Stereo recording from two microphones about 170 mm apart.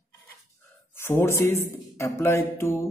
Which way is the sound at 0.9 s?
15° left (ahead or behind).